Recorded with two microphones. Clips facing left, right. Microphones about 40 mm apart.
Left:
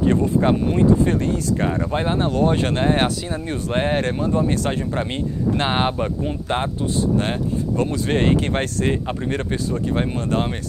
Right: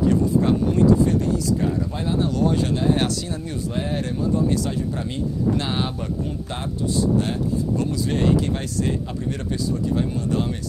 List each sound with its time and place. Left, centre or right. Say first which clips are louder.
0.0 s speech: left 1 dB; left